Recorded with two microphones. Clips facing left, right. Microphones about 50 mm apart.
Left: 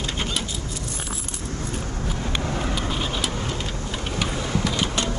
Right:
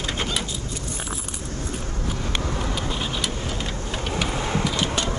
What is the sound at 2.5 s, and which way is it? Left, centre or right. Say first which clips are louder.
Vehicle: left 1 dB; centre.